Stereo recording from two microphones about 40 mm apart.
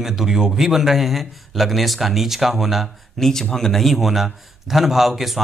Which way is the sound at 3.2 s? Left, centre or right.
Centre.